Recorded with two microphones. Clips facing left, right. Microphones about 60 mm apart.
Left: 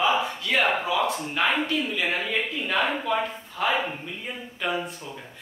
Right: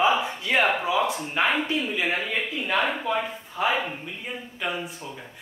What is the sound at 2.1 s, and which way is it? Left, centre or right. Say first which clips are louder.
Speech: even; centre.